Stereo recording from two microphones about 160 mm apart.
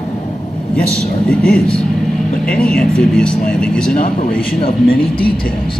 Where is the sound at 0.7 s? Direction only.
5° left (ahead or behind).